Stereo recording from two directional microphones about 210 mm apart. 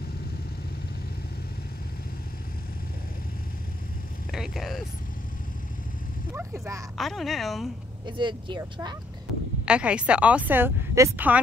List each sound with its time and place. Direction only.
4.3 s speech: centre (ahead or behind)
6.3 s a sound: 15° right (ahead or behind)
7.0 s speech: centre (ahead or behind)
8.2 s speech: 20° right (ahead or behind)
9.7 s a woman's voice: 5° right (ahead or behind)